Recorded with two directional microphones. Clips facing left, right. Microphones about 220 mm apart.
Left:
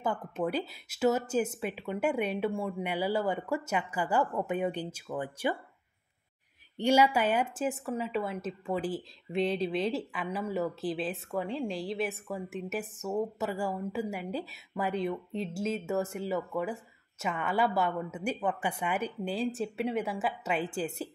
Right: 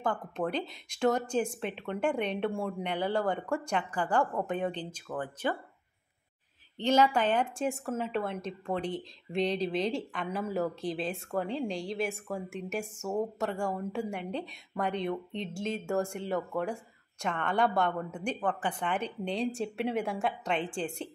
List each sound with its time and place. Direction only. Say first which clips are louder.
0.0 s speech: even; 5° left (ahead or behind)
6.8 s speech: left 1 dB; 10° left (ahead or behind)